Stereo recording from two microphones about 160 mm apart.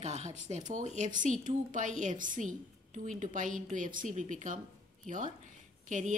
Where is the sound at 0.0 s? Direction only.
45° right (ahead or behind).